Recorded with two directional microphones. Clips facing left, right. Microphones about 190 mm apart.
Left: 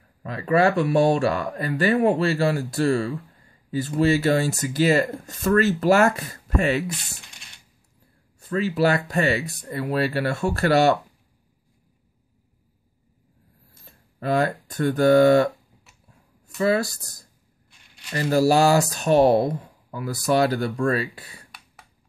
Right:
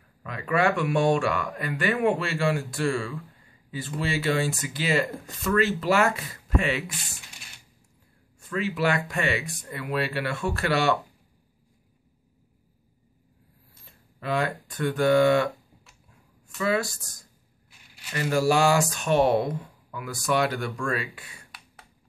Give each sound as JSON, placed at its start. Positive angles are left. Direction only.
{"t": 0.2, "sound": "speech", "side_deg": 35}
{"t": 8.4, "sound": "speech", "side_deg": 35}
{"t": 13.8, "sound": "speech", "side_deg": 40}